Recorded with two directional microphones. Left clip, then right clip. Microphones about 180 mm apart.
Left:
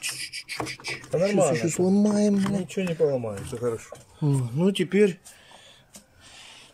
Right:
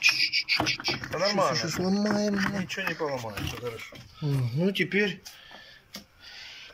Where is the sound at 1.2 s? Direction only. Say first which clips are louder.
Left 3 dB; 25° left (ahead or behind).